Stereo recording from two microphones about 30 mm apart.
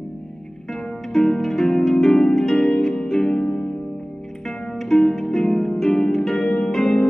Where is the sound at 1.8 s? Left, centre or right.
Centre.